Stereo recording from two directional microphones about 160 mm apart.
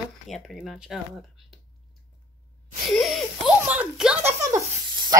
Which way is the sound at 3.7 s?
5° right (ahead or behind).